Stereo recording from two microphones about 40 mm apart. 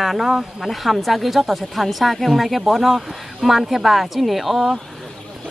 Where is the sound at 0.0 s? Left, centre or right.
Centre.